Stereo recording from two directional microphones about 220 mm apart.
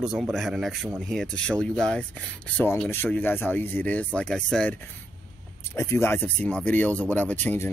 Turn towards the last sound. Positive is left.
turn(degrees=10)  # may be behind; listen again after turning